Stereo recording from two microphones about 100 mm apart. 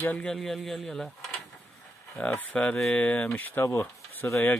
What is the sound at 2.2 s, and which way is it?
Speech, 15° left (ahead or behind).